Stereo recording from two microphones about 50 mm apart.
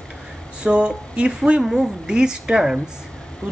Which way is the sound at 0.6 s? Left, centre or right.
Centre.